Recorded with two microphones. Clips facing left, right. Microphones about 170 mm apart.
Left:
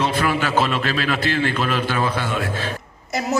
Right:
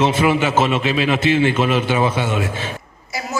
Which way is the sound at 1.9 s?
20° right (ahead or behind).